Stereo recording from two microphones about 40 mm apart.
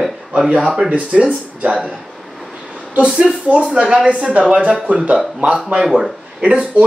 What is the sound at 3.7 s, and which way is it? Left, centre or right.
Speech, right.